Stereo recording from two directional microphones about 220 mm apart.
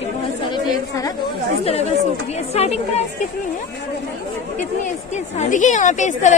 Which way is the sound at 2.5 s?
30° left (ahead or behind).